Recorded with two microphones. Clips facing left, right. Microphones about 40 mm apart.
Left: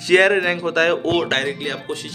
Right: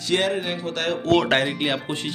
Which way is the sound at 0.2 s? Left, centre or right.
Left.